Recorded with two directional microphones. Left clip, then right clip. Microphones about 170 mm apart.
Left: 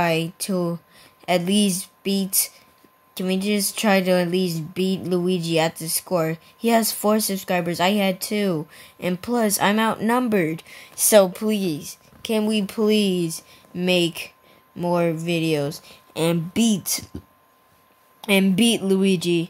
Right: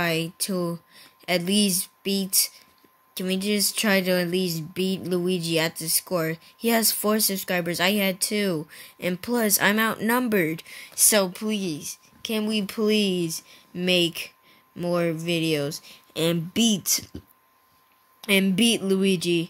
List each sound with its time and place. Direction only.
0.0 s speech: centre (ahead or behind)
11.3 s speech: 20° left (ahead or behind); by 17.2 s 5° right (ahead or behind)
18.2 s speech: centre (ahead or behind)